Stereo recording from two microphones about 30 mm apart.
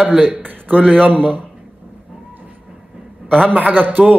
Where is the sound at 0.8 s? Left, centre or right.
Right.